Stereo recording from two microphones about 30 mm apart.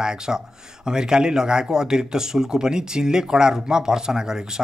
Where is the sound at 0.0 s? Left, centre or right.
Right.